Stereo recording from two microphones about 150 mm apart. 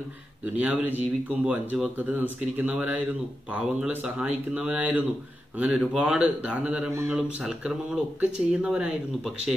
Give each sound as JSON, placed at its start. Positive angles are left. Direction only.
{"t": 0.6, "sound": "speech", "side_deg": -10}
{"t": 7.2, "sound": "speech", "side_deg": -5}